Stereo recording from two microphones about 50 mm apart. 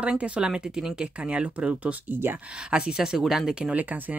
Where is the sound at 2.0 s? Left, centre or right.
Right.